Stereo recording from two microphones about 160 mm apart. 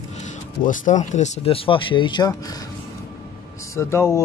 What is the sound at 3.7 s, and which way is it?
Speech, 15° left (ahead or behind).